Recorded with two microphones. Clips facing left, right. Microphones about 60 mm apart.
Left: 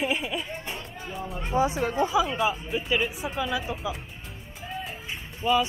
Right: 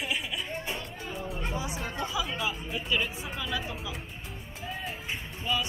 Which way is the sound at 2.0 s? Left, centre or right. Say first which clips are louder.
Left 8 dB; left.